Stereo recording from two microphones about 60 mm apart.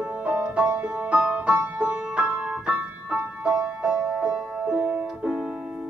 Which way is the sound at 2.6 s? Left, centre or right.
Centre.